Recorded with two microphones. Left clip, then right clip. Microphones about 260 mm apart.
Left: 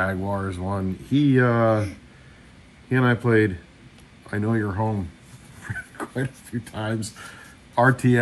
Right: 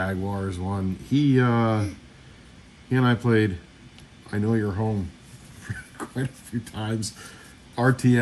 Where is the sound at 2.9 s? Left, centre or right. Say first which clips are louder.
Left 2 dB; centre.